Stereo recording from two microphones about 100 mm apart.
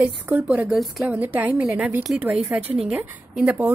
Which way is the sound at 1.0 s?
15° right (ahead or behind).